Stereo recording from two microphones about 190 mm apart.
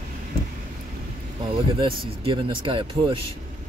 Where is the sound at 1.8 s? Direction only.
30° right (ahead or behind).